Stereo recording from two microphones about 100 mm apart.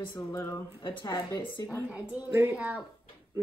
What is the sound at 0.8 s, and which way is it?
Speech, 50° left (ahead or behind).